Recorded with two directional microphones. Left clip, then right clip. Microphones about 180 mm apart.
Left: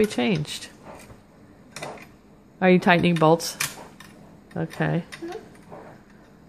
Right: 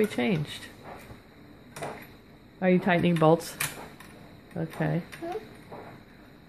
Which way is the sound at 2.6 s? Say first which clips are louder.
Left 6 dB; 35° left (ahead or behind).